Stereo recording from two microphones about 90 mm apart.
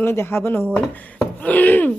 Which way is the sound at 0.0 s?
25° left (ahead or behind).